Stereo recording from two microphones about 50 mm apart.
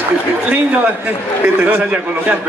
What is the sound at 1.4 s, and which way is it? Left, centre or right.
Speech, right.